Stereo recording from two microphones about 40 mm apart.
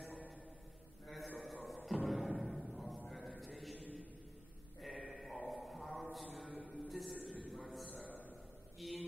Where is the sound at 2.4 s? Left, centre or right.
Centre.